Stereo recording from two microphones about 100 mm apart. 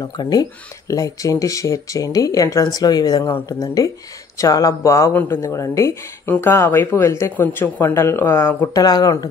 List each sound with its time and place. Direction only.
0.0 s speech: 40° left (ahead or behind)
6.2 s speech: 20° left (ahead or behind)
8.7 s speech: 40° left (ahead or behind)